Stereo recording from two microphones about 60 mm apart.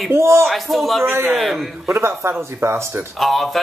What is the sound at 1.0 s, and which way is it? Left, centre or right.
Speech, right.